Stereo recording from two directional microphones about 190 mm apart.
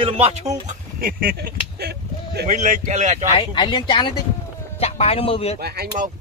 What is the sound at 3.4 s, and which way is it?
A man's voice, 25° left (ahead or behind).